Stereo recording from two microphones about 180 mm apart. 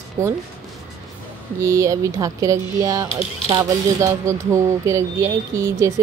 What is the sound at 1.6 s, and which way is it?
Speech, 15° right (ahead or behind).